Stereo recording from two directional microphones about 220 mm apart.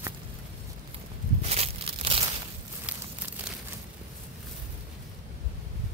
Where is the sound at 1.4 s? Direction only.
30° right (ahead or behind).